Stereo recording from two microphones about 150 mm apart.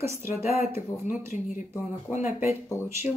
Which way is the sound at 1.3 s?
60° left (ahead or behind).